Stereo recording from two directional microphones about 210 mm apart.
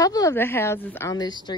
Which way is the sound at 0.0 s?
15° left (ahead or behind).